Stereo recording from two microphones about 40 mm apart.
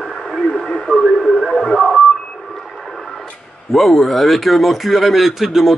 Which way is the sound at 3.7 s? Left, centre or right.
Centre.